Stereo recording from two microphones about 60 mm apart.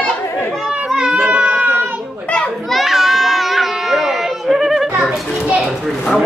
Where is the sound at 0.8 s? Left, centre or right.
Centre.